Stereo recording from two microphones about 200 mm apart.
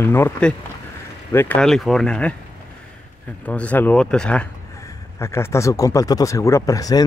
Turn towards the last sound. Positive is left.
turn(degrees=15)  # may be behind; listen again after turning